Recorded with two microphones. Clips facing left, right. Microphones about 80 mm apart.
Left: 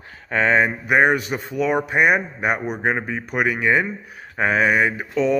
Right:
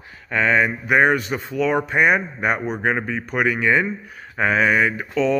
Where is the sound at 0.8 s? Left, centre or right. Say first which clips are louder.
Even; left.